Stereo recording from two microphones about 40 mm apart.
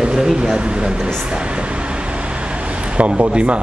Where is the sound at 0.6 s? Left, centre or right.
Right.